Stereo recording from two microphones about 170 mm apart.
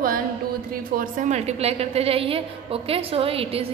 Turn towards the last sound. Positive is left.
turn(degrees=-35)  # may be behind; listen again after turning